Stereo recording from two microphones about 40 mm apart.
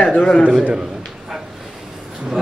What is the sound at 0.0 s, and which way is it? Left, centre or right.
Speech, centre.